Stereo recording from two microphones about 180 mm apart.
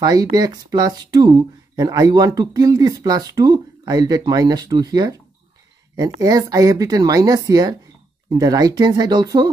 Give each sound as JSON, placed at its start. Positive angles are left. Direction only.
{"t": 0.0, "sound": "speech", "side_deg": -20}